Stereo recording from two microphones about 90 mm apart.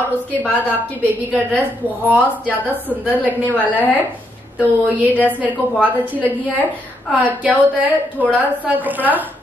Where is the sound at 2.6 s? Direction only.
20° right (ahead or behind).